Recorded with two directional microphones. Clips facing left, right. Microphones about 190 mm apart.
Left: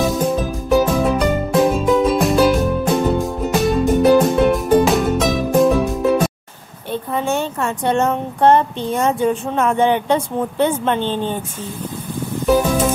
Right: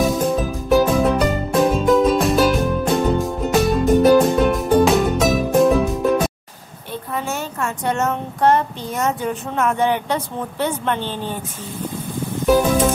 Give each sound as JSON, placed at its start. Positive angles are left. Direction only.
{"t": 0.0, "sound": "music", "side_deg": 0}
{"t": 6.9, "sound": "a woman's voice", "side_deg": 30}
{"t": 12.4, "sound": "music", "side_deg": 0}